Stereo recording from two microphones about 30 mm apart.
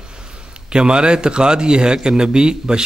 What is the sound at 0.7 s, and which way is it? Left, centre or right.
A man's voice, right.